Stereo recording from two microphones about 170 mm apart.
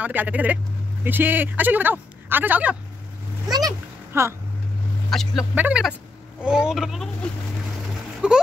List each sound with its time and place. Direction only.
0.0 s a child's voice: 10° right (ahead or behind)
5.1 s speech: centre (ahead or behind)
8.2 s speech: 5° right (ahead or behind)